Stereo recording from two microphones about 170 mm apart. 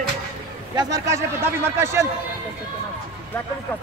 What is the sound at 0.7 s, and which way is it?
A man's voice, 20° right (ahead or behind).